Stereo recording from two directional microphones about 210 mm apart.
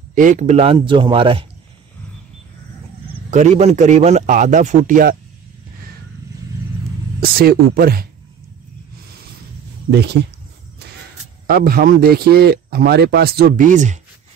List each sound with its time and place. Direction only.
0.1 s a man's voice: 40° right (ahead or behind)
3.3 s a man's voice: 35° right (ahead or behind)
7.2 s speech: 45° right (ahead or behind)
9.8 s speech: 50° right (ahead or behind)
11.4 s speech: 45° right (ahead or behind)